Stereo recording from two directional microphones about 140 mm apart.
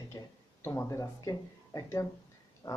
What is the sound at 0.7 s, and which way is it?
Speech, 20° left (ahead or behind).